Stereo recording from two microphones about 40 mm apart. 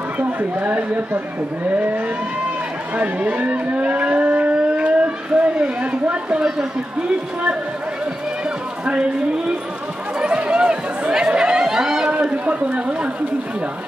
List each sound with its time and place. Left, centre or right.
0.2 s speech: right
3.0 s a sound: right
6.4 s a man's voice: right
10.1 s chatter: right
12.1 s a man's voice: right